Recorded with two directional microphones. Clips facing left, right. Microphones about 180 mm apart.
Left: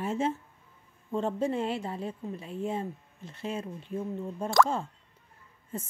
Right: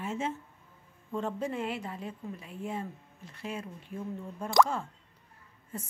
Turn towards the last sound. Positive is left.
turn(degrees=25)  # may be behind; listen again after turning